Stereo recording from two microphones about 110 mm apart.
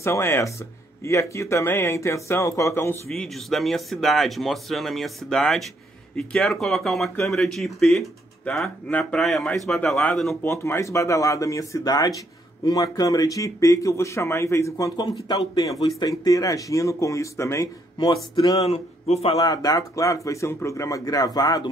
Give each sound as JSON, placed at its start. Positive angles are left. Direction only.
{"t": 0.0, "sound": "speech", "side_deg": 25}
{"t": 3.1, "sound": "speech", "side_deg": 0}
{"t": 10.4, "sound": "speech", "side_deg": 25}
{"t": 17.9, "sound": "speech", "side_deg": 40}
{"t": 18.6, "sound": "a man's voice", "side_deg": 70}
{"t": 19.4, "sound": "speech", "side_deg": 35}